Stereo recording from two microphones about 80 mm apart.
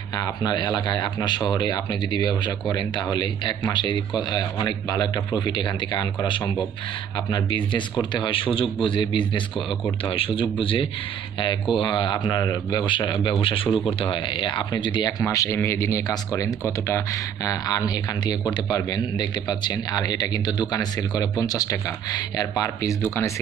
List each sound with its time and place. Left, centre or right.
0.2 s a man's voice: left
8.0 s a man's voice: left
13.4 s speech: left
15.2 s speech: left
16.1 s speech: left
18.9 s speech: left